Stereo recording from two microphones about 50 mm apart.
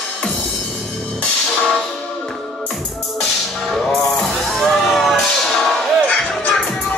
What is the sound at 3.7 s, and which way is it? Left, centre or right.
Music, centre.